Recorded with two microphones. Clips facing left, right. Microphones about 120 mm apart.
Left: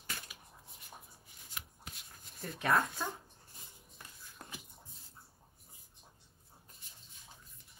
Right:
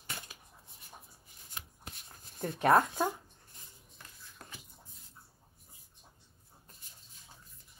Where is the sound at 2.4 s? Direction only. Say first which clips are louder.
Right 6 dB; 30° right (ahead or behind).